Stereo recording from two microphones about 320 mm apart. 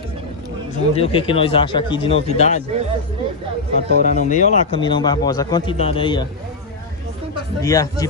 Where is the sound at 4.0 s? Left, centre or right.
Left.